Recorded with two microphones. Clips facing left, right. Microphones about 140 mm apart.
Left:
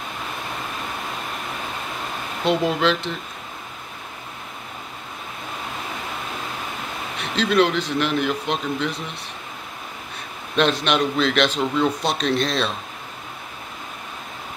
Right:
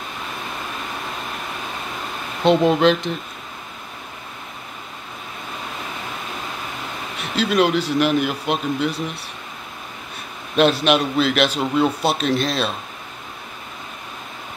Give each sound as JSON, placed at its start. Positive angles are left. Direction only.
{"t": 2.4, "sound": "a man's voice", "side_deg": -20}
{"t": 7.3, "sound": "a man's voice", "side_deg": -10}
{"t": 10.5, "sound": "a man's voice", "side_deg": -5}